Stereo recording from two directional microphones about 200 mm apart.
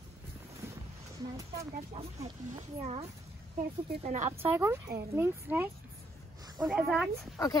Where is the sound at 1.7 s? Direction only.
35° right (ahead or behind).